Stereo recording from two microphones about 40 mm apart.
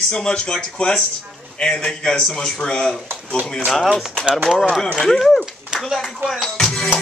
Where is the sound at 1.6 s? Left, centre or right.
Left.